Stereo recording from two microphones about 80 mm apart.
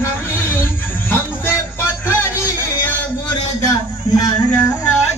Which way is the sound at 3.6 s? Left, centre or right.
Left.